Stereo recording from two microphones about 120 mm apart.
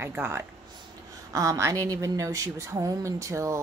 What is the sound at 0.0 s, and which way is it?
A woman's voice, 20° right (ahead or behind).